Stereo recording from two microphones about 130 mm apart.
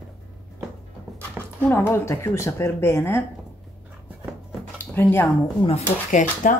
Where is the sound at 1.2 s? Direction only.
15° left (ahead or behind).